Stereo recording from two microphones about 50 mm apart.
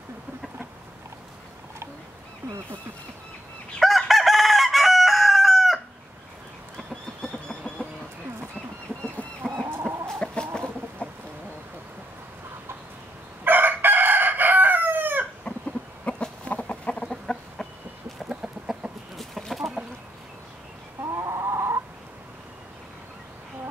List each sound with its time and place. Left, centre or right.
3.8 s chicken: centre
6.9 s a sound: centre
8.9 s chicken: right
9.6 s chicken: right
10.2 s chicken: centre
13.4 s chicken: right
15.5 s cough: left
16.1 s chicken: left
17.1 s chicken: centre
18.3 s chicken: centre
21.0 s chicken: right